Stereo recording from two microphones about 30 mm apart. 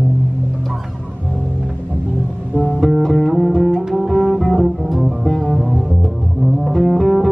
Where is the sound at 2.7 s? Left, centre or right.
Centre.